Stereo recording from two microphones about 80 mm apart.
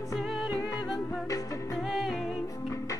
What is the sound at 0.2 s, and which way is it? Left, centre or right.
Music, centre.